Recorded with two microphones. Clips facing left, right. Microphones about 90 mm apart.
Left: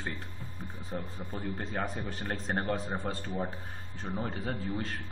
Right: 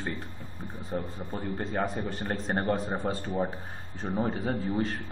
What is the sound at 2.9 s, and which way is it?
Speech, 20° right (ahead or behind).